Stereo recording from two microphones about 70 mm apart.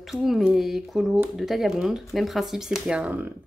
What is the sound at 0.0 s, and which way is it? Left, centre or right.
Speech, centre.